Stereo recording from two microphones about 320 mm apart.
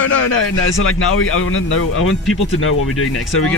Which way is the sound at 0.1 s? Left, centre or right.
Left.